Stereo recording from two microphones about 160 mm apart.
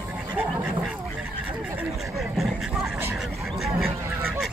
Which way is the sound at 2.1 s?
Centre (ahead or behind).